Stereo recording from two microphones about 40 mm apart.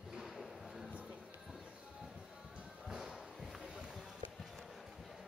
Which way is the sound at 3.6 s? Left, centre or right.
Centre.